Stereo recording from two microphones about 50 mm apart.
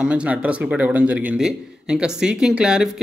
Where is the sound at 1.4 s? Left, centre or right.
Centre.